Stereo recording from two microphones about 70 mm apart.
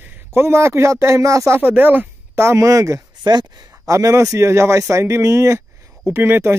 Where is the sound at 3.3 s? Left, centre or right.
Right.